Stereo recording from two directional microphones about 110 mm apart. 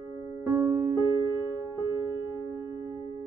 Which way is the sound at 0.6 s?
25° right (ahead or behind).